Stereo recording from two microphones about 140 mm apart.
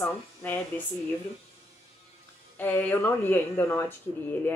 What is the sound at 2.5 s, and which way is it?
A woman's voice, 15° left (ahead or behind).